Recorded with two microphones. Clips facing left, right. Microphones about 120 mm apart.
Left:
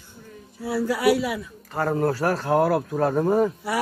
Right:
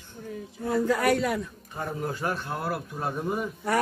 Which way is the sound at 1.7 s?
80° left.